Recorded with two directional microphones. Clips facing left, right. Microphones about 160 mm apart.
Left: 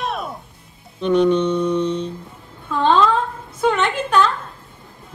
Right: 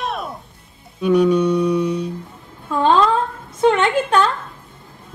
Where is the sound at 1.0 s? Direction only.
10° right (ahead or behind).